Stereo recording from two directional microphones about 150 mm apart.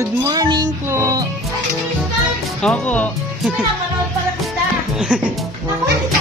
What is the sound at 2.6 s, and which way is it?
Speech, 10° left (ahead or behind).